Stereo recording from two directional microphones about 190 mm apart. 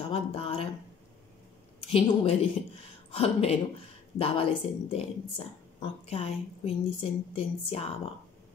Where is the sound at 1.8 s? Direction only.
30° left (ahead or behind).